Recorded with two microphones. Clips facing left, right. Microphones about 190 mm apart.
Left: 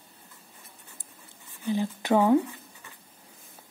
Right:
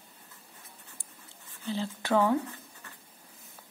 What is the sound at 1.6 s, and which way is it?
Speech, 15° left (ahead or behind).